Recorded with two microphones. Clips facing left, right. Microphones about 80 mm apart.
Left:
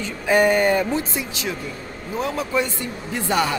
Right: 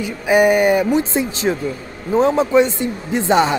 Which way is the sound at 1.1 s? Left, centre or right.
Right.